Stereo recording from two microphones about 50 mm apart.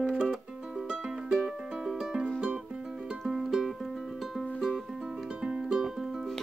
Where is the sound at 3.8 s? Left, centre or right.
Centre.